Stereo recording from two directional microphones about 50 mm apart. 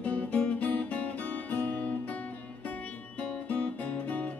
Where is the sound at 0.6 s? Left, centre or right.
Left.